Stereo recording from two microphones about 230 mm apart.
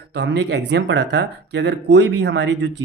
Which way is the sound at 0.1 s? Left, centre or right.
Right.